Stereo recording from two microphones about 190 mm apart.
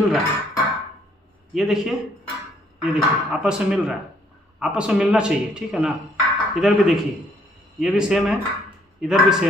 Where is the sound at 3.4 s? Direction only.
Centre (ahead or behind).